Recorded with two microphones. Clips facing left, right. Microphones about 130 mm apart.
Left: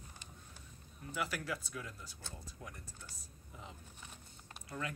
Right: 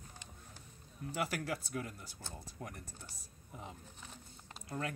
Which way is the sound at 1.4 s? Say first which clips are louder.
Right 3 dB; 45° right (ahead or behind).